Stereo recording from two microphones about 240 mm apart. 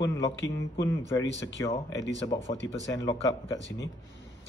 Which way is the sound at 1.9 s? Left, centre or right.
Left.